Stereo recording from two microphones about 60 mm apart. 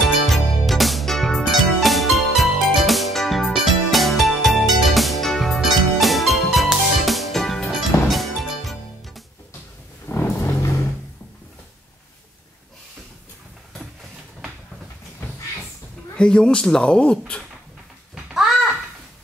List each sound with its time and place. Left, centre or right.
0.0 s music: centre
10.1 s vehicle: left
10.4 s a sound: left
16.2 s speech: centre
18.1 s babbling: centre